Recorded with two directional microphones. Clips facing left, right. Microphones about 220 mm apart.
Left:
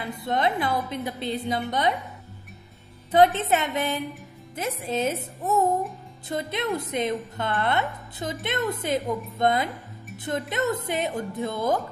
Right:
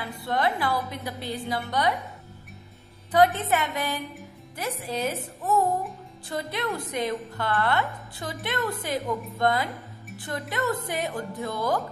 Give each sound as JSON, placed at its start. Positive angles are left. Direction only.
{"t": 0.0, "sound": "a woman's voice", "side_deg": 20}
{"t": 3.1, "sound": "a woman's voice", "side_deg": 25}